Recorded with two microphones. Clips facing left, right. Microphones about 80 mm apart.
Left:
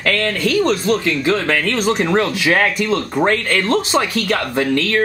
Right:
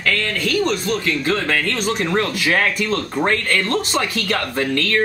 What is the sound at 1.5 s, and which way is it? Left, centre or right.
Speech, left.